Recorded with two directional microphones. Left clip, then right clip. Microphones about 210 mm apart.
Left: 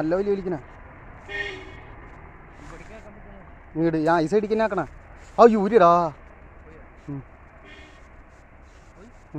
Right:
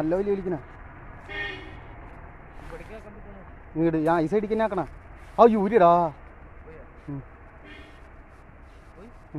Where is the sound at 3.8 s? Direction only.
15° left (ahead or behind).